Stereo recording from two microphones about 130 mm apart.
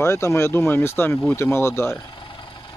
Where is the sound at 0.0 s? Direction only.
20° left (ahead or behind).